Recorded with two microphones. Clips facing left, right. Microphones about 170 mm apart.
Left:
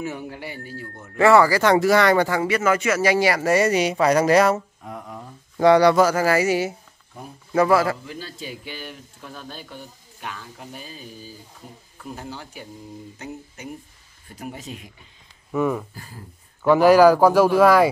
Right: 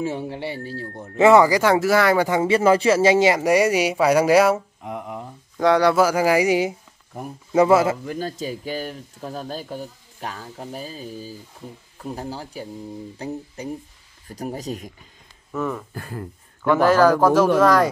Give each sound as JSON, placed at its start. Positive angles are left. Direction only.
{"t": 0.0, "sound": "a man's voice", "side_deg": -30}
{"t": 1.1, "sound": "a man's voice", "side_deg": -20}
{"t": 1.6, "sound": "speech", "side_deg": -5}
{"t": 2.2, "sound": "speech", "side_deg": -25}
{"t": 4.8, "sound": "a man's voice", "side_deg": -20}
{"t": 5.6, "sound": "a man's voice", "side_deg": 0}
{"t": 8.0, "sound": "speech", "side_deg": -45}
{"t": 15.5, "sound": "speech", "side_deg": 10}
{"t": 15.9, "sound": "speech", "side_deg": -60}
{"t": 16.6, "sound": "speech", "side_deg": 15}
{"t": 17.1, "sound": "speech", "side_deg": 0}